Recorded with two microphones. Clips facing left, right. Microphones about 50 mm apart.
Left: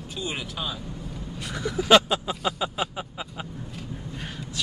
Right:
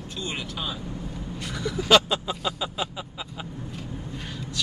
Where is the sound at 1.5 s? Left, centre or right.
Centre.